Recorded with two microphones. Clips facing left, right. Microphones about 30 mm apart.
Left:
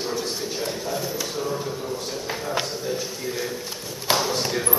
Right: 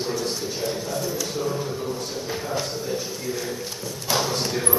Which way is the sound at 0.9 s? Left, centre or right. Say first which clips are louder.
Right 1 dB; centre.